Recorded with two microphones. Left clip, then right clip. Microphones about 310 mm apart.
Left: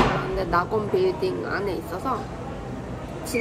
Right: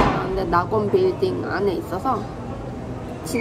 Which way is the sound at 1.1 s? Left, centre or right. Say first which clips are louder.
Right 3 dB; centre.